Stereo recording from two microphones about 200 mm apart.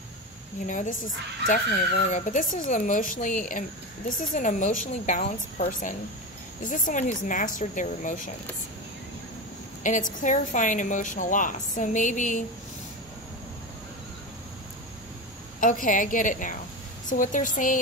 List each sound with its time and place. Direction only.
0.7 s a woman's voice: 40° left (ahead or behind)
9.8 s a woman's voice: 40° left (ahead or behind)
15.6 s a woman's voice: 40° left (ahead or behind)